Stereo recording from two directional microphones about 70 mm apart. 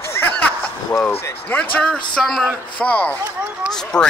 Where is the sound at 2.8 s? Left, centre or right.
Left.